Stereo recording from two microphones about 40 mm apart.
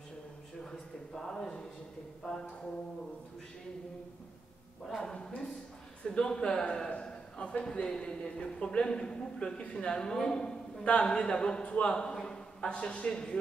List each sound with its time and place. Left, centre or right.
0.7 s a sound: centre
2.2 s a woman's voice: centre
4.8 s a woman's voice: centre